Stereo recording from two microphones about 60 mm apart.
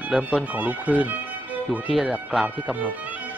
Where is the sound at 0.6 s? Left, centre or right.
Right.